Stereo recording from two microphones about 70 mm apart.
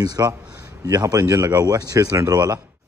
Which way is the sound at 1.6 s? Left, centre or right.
Right.